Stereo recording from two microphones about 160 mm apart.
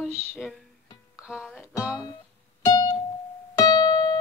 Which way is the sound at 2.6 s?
20° left (ahead or behind).